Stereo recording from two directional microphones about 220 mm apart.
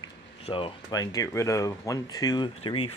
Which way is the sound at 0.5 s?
25° left (ahead or behind).